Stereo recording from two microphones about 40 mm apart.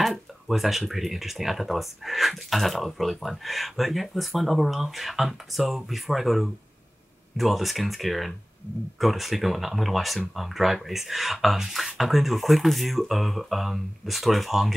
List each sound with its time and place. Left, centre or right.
0.0 s speech: centre